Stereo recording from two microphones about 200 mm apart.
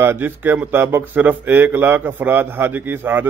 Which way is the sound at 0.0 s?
10° right (ahead or behind).